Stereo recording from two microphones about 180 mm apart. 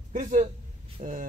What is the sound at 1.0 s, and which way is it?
Speech, 45° right (ahead or behind).